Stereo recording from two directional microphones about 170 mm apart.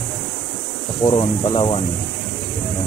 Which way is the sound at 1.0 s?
25° left (ahead or behind).